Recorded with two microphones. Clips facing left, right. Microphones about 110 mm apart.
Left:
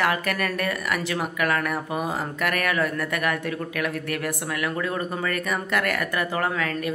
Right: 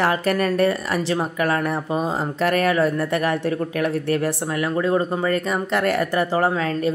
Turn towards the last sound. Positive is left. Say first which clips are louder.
# right 5 dB
turn(degrees=-30)  # may be behind; listen again after turning